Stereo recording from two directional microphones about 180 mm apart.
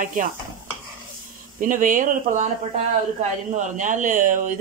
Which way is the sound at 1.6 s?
45° right (ahead or behind).